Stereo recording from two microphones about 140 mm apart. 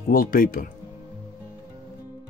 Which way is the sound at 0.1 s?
90° left.